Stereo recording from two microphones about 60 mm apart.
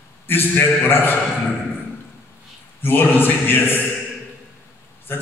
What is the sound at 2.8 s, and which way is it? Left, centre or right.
Mantra, left.